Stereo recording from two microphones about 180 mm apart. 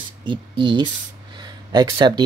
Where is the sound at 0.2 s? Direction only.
25° right (ahead or behind).